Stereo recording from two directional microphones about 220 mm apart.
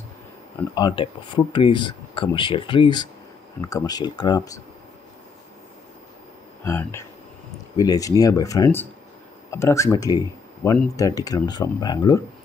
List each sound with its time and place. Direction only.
0.7 s speech: 20° left (ahead or behind)
6.6 s speech: 10° left (ahead or behind)